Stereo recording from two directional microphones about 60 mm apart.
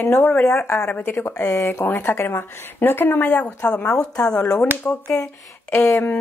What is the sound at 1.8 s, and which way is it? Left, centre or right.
Speech, left.